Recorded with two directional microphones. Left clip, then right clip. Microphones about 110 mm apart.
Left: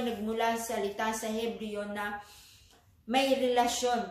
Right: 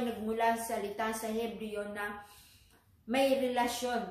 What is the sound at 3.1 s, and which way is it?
Speech, 15° left (ahead or behind).